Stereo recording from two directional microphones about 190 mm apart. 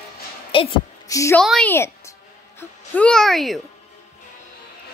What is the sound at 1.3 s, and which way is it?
A woman's voice, 5° left (ahead or behind).